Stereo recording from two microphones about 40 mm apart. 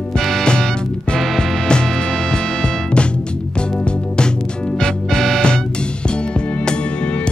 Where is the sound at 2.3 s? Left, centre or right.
Left.